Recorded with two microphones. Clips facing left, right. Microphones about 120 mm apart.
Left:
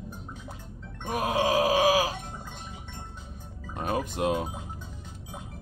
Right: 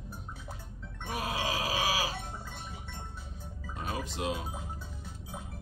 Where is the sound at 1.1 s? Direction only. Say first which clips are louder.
Left 8 dB; 50° left (ahead or behind).